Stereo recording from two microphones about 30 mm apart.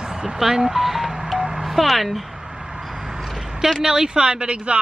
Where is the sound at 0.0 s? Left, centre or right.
Right.